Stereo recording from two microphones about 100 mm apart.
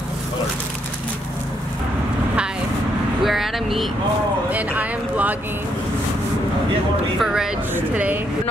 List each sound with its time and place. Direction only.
3.3 s vehicle: centre (ahead or behind)
4.5 s speech: 15° right (ahead or behind)
7.2 s speech: 5° right (ahead or behind)
7.7 s speech: 20° right (ahead or behind)